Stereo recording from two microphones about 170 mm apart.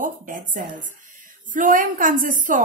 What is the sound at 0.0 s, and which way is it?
A woman's voice, 50° right (ahead or behind).